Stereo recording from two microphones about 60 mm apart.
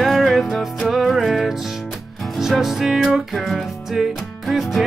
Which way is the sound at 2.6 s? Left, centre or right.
Centre.